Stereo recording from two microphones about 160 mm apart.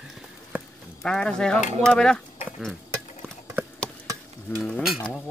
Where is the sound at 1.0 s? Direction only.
5° left (ahead or behind).